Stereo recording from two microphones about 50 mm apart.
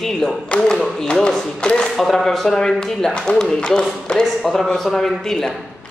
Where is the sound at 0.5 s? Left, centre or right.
Left.